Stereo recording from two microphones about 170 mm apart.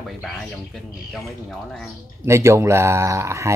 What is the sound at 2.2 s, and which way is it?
Speech, 15° right (ahead or behind).